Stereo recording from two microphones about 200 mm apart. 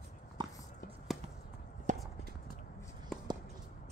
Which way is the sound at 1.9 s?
40° right (ahead or behind).